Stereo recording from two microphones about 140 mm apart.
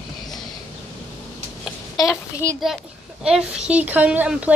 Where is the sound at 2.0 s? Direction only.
20° left (ahead or behind).